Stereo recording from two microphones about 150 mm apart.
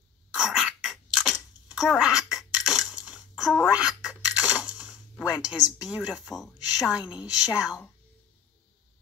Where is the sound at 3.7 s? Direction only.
5° right (ahead or behind).